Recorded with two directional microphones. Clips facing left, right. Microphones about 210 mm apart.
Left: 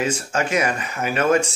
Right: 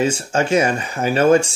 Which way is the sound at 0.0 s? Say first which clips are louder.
Right 4 dB; 30° right (ahead or behind).